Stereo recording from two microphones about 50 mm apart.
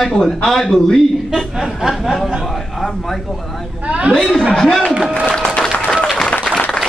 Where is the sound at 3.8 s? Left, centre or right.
Right.